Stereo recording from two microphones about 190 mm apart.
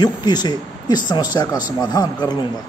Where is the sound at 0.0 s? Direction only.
20° left (ahead or behind).